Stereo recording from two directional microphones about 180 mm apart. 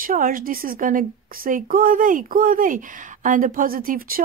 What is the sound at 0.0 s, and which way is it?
Speech, 50° right (ahead or behind).